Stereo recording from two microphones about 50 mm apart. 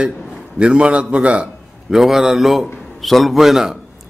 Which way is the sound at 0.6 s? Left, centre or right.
Right.